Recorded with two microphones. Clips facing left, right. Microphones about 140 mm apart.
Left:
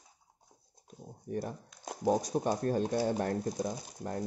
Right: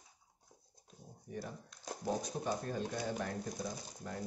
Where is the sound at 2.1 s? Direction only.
70° left (ahead or behind).